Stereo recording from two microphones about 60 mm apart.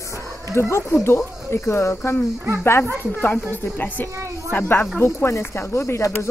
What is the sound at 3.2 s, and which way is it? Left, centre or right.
Speech, left.